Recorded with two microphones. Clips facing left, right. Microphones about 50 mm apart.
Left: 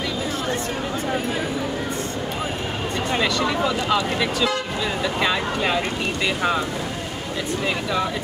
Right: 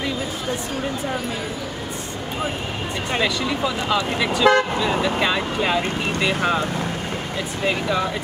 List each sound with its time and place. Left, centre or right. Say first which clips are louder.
3.2 s speech: even; centre
7.6 s speech: right 3 dB; centre